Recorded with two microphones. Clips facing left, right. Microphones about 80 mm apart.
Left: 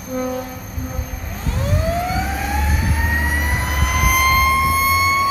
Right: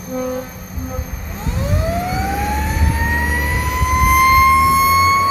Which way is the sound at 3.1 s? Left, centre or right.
Left.